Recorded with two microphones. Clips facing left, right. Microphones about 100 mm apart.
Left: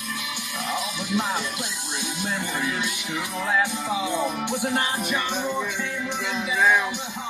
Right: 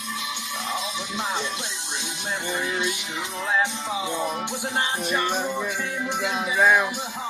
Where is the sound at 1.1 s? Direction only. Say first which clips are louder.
Left 3 dB; 25° right (ahead or behind).